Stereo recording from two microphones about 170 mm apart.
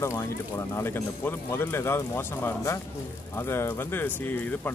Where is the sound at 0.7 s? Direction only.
15° left (ahead or behind).